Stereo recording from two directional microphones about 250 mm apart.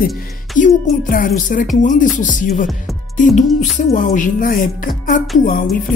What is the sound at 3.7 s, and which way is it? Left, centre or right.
Speech, left.